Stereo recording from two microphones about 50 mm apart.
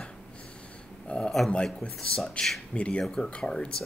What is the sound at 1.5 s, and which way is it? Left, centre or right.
Speech, left.